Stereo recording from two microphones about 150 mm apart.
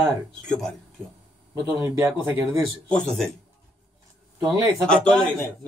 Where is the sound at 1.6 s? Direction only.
15° right (ahead or behind).